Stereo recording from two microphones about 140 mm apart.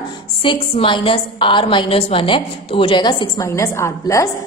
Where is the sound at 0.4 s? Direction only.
35° left (ahead or behind).